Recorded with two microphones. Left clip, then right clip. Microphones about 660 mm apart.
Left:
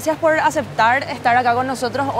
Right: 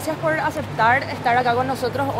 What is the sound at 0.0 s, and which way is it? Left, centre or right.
Speech, left.